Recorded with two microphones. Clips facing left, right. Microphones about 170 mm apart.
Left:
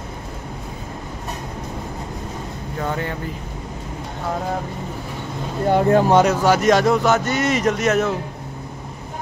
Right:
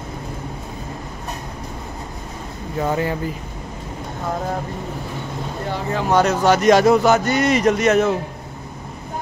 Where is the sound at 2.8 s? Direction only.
10° right (ahead or behind).